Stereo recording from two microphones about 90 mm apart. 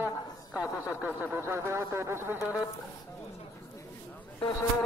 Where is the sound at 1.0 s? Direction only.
20° right (ahead or behind).